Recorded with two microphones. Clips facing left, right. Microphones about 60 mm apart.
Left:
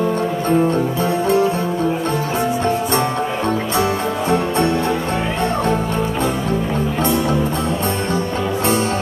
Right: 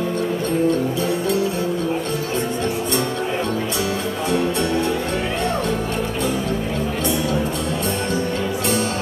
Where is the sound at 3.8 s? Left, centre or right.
Left.